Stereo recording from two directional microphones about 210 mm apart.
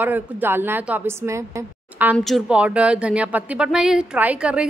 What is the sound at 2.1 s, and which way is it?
Speech, centre (ahead or behind).